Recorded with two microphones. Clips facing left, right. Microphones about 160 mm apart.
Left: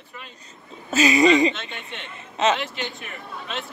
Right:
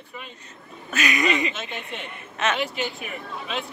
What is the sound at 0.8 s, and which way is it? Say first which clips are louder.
Speech: left 7 dB; 30° left (ahead or behind).